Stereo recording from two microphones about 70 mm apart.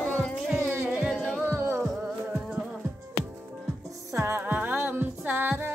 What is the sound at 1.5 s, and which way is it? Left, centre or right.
Music, right.